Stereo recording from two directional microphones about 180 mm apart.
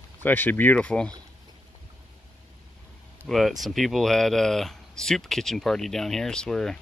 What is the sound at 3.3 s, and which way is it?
Speech, centre (ahead or behind).